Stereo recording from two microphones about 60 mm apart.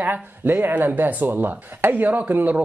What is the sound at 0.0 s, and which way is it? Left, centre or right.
Speech, right.